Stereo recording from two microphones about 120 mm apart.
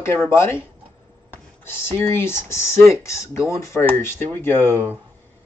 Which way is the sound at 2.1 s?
20° left (ahead or behind).